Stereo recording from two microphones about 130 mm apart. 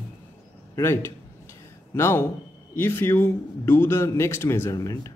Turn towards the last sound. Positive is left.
turn(degrees=25)  # may be behind; listen again after turning